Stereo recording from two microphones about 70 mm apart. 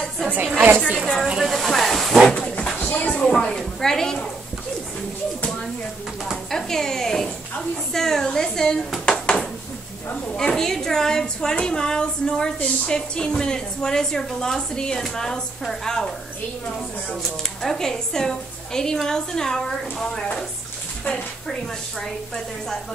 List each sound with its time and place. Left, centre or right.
0.6 s speech: right
1.2 s speech: centre
2.3 s a sound: centre
3.2 s speech: centre
6.2 s a sound: centre
7.9 s a woman's voice: centre
17.6 s a woman's voice: centre
22.0 s speech: centre